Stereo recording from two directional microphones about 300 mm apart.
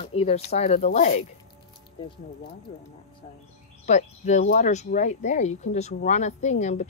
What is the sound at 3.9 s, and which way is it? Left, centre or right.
Speech, left.